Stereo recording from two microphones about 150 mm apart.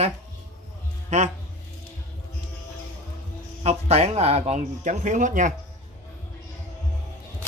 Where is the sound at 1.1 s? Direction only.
50° right (ahead or behind).